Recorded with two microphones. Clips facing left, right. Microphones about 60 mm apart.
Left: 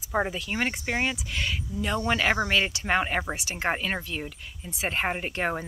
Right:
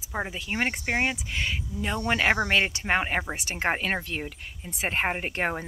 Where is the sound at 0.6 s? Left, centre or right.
Right.